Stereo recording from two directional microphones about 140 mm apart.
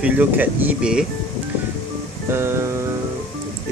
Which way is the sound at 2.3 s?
20° right (ahead or behind).